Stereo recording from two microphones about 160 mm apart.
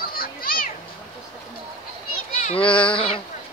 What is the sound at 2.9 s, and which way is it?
Speech, 35° left (ahead or behind).